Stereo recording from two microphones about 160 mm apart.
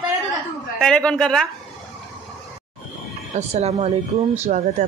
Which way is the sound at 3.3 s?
40° right (ahead or behind).